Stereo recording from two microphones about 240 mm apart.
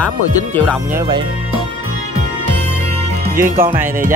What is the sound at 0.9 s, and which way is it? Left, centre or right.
Speech, centre.